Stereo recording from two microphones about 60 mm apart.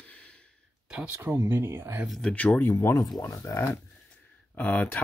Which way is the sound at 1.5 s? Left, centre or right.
Right.